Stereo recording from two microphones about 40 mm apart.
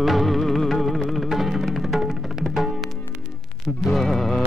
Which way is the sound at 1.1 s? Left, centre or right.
Centre.